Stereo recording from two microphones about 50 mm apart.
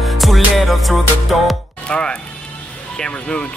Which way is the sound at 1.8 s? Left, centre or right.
Left.